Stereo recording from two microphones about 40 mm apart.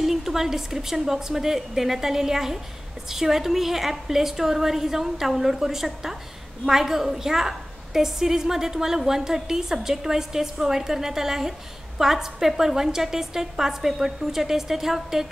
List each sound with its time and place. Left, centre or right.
0.0 s a woman's voice: centre